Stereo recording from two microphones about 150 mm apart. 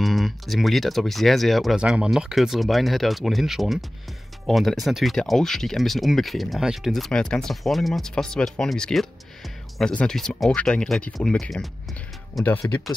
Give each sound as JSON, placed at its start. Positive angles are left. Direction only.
{"t": 0.0, "sound": "speech", "side_deg": 0}